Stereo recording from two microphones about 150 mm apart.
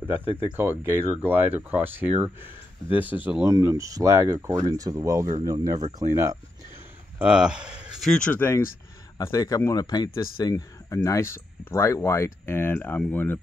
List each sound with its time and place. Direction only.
0.0 s speech: 15° right (ahead or behind)
7.2 s speech: 5° right (ahead or behind); by 13.4 s 10° left (ahead or behind)